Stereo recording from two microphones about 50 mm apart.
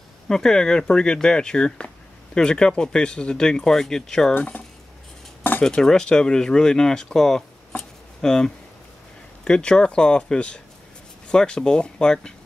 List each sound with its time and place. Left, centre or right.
0.3 s speech: centre
5.6 s speech: centre
7.7 s a sound: centre
9.4 s speech: centre